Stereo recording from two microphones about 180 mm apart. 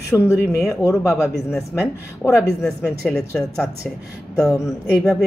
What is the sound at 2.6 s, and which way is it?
Speech, 5° left (ahead or behind).